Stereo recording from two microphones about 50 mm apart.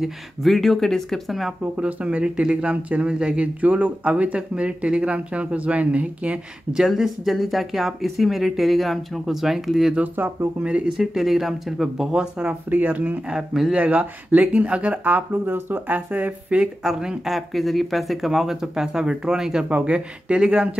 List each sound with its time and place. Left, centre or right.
0.0 s speech: centre
1.6 s speech: right
3.6 s speech: right
6.7 s speech: centre
9.9 s speech: right
10.6 s speech: right; by 12.1 s centre
12.1 s speech: centre
12.6 s speech: right
13.3 s speech: centre
13.7 s speech: right
15.4 s speech: right
16.1 s speech: right
16.8 s speech: centre
19.7 s speech: right